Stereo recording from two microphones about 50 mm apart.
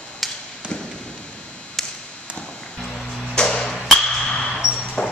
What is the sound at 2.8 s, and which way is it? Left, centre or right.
Music, centre.